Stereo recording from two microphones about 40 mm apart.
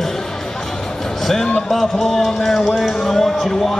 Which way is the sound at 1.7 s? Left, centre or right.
Centre.